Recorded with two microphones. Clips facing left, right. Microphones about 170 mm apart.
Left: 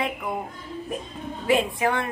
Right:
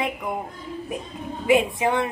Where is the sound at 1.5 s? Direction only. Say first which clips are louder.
Right 2 dB; 20° right (ahead or behind).